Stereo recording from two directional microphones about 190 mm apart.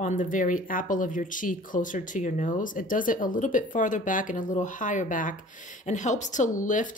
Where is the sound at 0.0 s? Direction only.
45° left (ahead or behind).